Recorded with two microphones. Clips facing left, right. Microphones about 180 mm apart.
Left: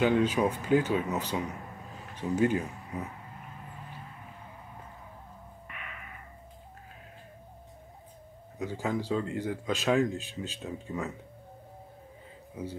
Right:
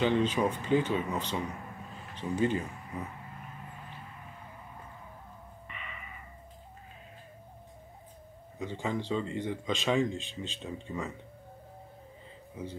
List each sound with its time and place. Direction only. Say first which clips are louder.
0.0 s speech: left 2 dB; 10° left (ahead or behind)
5.7 s a sound: even; 5° left (ahead or behind)
8.5 s speech: left 2 dB; 5° left (ahead or behind)